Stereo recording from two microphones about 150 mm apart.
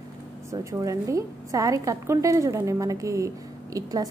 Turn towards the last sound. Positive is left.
turn(degrees=-25)  # may be behind; listen again after turning